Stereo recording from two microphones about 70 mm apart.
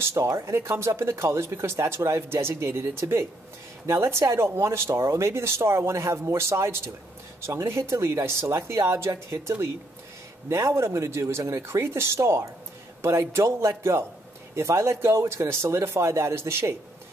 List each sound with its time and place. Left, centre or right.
0.0 s speech: right